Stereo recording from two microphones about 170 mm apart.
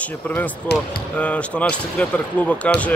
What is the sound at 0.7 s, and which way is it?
Speech, 75° left (ahead or behind).